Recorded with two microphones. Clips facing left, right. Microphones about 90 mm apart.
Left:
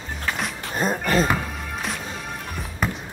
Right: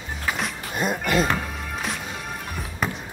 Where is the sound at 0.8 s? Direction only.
35° left (ahead or behind).